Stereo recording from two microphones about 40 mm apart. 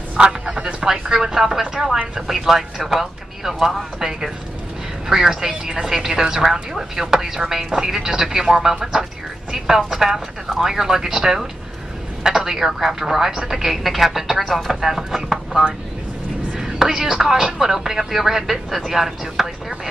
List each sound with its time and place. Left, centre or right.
0.2 s a sound: right
0.8 s a woman's voice: centre
16.5 s speech: centre